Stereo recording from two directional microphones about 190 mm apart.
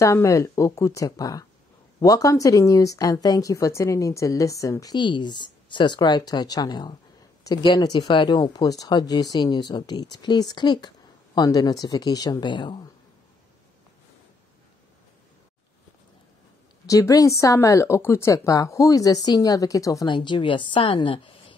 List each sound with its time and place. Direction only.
0.0 s speech: 15° left (ahead or behind)
16.8 s speech: 15° left (ahead or behind)